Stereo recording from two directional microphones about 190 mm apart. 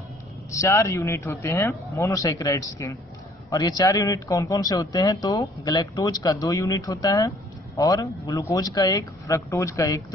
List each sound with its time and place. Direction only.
0.5 s speech: 15° left (ahead or behind)